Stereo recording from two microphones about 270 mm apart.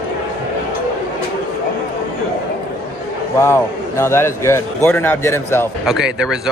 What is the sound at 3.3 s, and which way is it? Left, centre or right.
A man's voice, centre.